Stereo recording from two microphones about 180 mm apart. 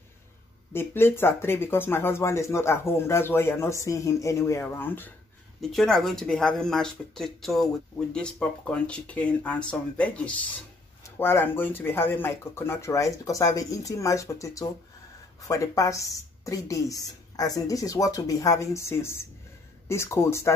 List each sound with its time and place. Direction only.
0.7 s speech: 15° left (ahead or behind)